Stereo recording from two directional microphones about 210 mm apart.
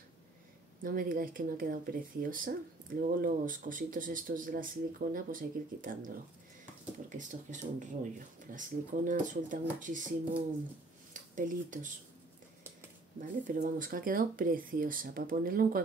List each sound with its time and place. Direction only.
0.8 s speech: 40° right (ahead or behind)
11.3 s speech: 40° right (ahead or behind)
13.2 s speech: 40° right (ahead or behind)